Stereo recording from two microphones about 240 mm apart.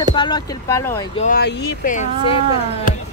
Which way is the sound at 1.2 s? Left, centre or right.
Left.